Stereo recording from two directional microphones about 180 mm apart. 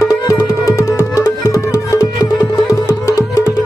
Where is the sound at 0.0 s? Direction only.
20° left (ahead or behind).